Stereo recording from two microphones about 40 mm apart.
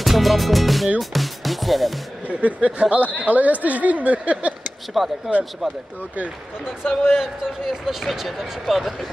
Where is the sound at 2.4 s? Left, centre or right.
Right.